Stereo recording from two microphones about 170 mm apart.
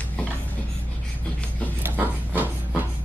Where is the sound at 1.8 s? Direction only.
10° right (ahead or behind).